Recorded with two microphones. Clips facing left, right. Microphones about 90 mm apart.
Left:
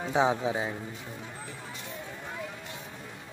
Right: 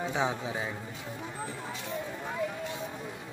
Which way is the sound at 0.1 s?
30° left (ahead or behind).